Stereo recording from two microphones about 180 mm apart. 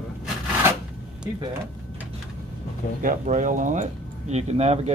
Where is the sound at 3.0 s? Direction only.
45° right (ahead or behind).